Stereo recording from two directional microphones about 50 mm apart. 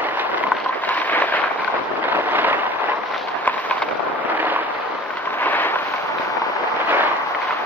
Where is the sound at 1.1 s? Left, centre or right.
Left.